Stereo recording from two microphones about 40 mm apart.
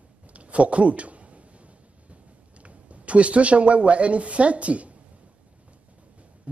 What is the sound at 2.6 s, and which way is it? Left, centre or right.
Speech, right.